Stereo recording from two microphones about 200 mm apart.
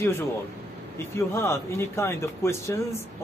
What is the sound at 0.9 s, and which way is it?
Speech, 10° left (ahead or behind).